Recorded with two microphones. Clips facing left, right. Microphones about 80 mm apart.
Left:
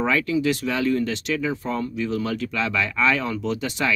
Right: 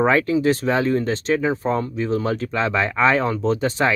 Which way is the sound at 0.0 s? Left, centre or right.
Right.